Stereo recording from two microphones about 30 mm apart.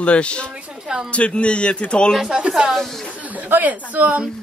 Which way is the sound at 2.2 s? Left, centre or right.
Right.